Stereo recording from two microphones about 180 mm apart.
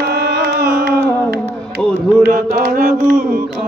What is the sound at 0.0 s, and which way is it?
Carnatic music, 65° right (ahead or behind).